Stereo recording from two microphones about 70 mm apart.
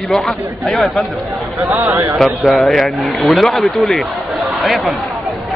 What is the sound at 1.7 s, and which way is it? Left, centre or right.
Speech, right.